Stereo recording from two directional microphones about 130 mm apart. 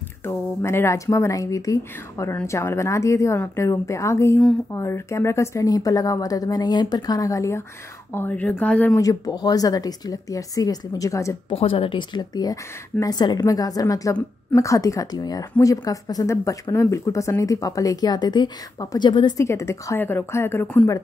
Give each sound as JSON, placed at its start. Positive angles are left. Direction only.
{"t": 0.2, "sound": "speech", "side_deg": 20}
{"t": 8.9, "sound": "speech", "side_deg": 30}
{"t": 11.5, "sound": "speech", "side_deg": 45}
{"t": 19.3, "sound": "speech", "side_deg": 20}